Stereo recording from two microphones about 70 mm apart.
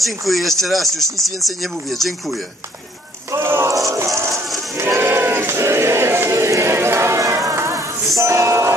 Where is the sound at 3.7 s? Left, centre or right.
Right.